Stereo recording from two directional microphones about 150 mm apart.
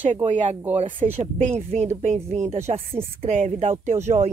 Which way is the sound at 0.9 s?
15° right (ahead or behind).